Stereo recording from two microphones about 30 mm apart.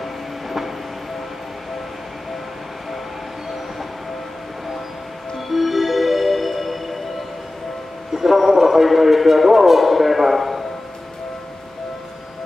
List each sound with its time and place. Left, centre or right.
0.0 s train: centre
5.5 s music: centre
8.1 s a sound: centre